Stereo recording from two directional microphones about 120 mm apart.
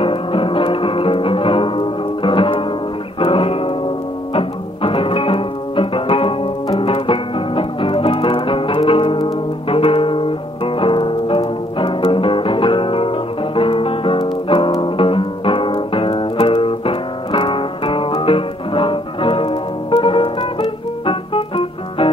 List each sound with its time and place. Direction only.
0.0 s music: 50° left (ahead or behind)